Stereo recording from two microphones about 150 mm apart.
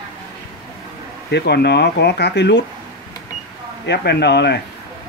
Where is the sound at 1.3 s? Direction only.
90° left.